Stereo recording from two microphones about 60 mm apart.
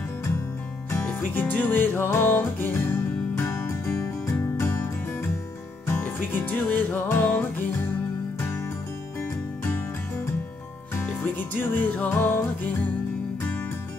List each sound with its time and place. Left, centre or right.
1.3 s music: left
6.0 s music: left
11.3 s music: left